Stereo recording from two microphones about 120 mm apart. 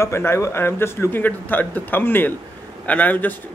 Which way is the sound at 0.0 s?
20° left (ahead or behind).